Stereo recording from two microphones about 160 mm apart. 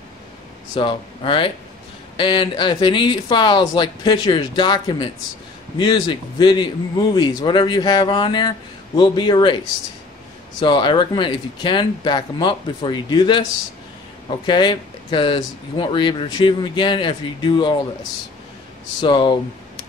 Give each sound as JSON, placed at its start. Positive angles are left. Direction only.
{"t": 0.7, "sound": "a man's voice", "side_deg": 30}
{"t": 10.6, "sound": "a man's voice", "side_deg": 30}
{"t": 18.9, "sound": "a man's voice", "side_deg": 30}